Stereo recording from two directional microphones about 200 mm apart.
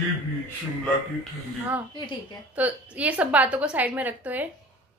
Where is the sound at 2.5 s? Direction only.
10° right (ahead or behind).